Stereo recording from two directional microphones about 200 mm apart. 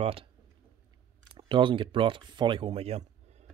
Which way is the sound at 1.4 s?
25° right (ahead or behind).